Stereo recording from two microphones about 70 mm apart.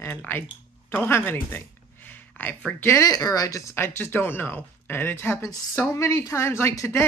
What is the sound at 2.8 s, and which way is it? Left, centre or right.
Speech, left.